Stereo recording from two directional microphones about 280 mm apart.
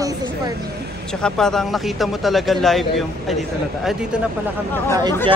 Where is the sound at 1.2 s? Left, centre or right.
Centre.